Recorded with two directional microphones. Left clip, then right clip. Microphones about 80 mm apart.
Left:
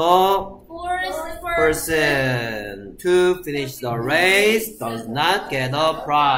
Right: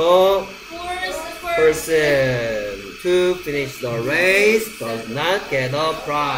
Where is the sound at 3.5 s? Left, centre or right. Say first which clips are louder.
Right 2 dB; centre.